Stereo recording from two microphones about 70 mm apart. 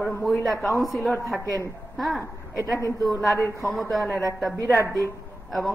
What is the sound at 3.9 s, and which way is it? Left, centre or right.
Speech, centre.